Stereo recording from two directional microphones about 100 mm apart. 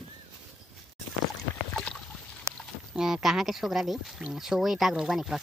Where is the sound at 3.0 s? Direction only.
5° right (ahead or behind).